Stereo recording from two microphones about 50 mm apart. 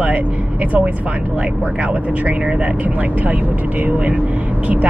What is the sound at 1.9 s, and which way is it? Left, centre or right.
Speech, right.